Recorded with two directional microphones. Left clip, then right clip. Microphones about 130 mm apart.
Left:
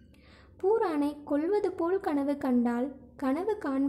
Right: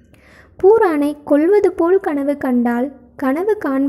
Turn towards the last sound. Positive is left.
turn(degrees=-35)  # may be behind; listen again after turning